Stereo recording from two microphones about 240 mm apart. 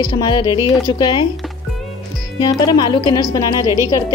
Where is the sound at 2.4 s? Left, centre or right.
Centre.